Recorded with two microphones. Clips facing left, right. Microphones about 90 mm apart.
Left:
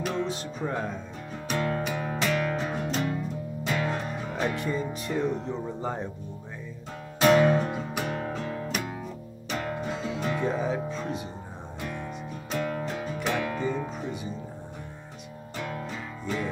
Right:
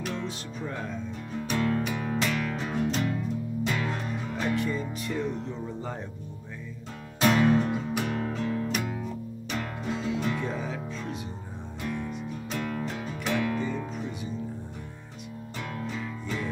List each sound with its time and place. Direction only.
0.0 s music: 5° left (ahead or behind)
0.3 s music: 30° left (ahead or behind)
1.5 s music: 10° left (ahead or behind); by 5.3 s 30° left (ahead or behind)
5.8 s speech: 25° left (ahead or behind)
7.2 s music: 10° left (ahead or behind); by 11.2 s 35° left (ahead or behind)
11.8 s music: 10° left (ahead or behind)
15.7 s music: 15° left (ahead or behind)